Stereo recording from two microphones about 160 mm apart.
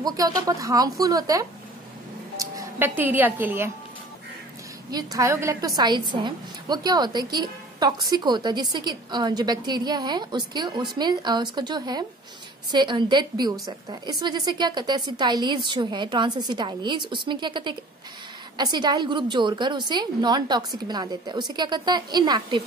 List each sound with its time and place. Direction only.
0.0 s a woman's voice: 20° right (ahead or behind)
2.3 s music: 20° right (ahead or behind)
3.0 s a woman's voice: 10° right (ahead or behind)
4.9 s a woman's voice: 20° right (ahead or behind)